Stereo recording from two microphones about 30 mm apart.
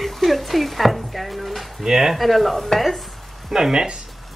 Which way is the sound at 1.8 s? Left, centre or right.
Centre.